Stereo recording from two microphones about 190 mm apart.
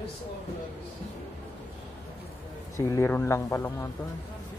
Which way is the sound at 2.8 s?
15° left (ahead or behind).